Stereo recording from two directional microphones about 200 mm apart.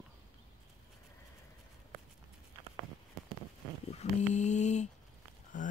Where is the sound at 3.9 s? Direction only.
35° left (ahead or behind).